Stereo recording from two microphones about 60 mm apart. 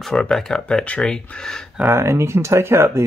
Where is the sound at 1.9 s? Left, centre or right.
Right.